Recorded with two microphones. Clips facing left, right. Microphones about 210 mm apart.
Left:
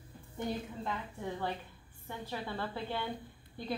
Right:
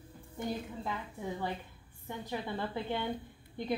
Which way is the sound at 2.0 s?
15° right (ahead or behind).